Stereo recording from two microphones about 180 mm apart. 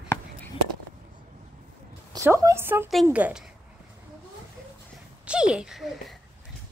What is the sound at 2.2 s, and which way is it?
A woman's voice, 15° right (ahead or behind).